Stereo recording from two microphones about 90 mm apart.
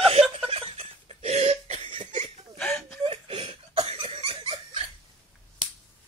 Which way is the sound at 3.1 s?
80° right.